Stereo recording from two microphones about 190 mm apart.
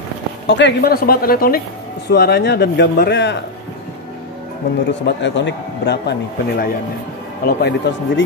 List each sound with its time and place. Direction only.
0.5 s a man's voice: 65° left (ahead or behind)
5.0 s a man's voice: 70° left (ahead or behind)